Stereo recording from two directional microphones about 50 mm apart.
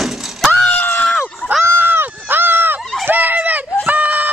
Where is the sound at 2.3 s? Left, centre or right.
Right.